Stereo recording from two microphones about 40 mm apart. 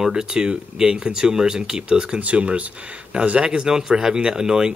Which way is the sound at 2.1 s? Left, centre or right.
Right.